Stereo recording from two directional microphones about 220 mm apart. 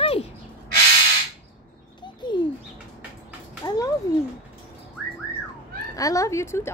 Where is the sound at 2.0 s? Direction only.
20° left (ahead or behind).